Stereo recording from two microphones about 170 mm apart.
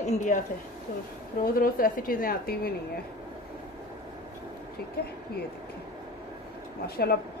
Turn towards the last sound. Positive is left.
turn(degrees=70)  # may be behind; listen again after turning